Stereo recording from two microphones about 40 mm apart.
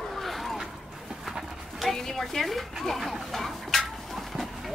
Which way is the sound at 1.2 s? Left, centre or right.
Centre.